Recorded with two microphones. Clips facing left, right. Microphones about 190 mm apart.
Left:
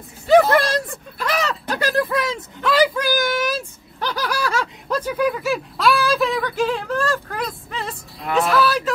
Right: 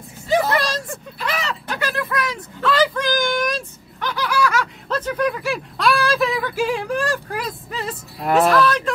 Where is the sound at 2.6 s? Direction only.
10° left (ahead or behind).